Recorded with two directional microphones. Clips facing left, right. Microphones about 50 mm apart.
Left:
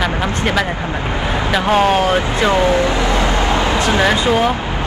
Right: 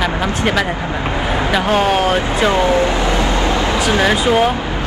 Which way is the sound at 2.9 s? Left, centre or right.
Left.